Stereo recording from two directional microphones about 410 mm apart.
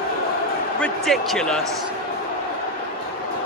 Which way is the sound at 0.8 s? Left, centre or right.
Centre.